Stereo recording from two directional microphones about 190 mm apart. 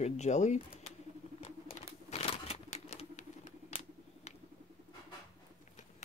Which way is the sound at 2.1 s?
35° left (ahead or behind).